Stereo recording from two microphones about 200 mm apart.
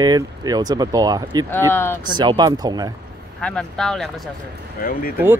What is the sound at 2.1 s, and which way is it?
Speech, 20° right (ahead or behind).